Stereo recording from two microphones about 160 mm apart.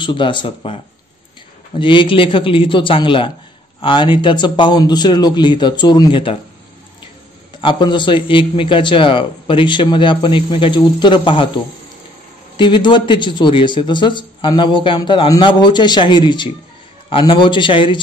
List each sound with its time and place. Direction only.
0.0 s a man's voice: 30° left (ahead or behind)
1.8 s a man's voice: 30° left (ahead or behind)
7.6 s a man's voice: 30° left (ahead or behind)